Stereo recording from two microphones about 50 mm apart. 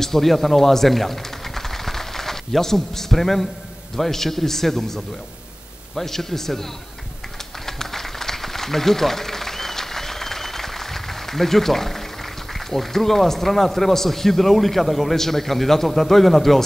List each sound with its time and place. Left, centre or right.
0.0 s a man's voice: centre
7.6 s a sound: centre
12.5 s a man's voice: centre